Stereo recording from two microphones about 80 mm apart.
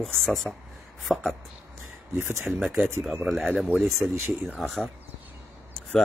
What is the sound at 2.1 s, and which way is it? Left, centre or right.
Speech, right.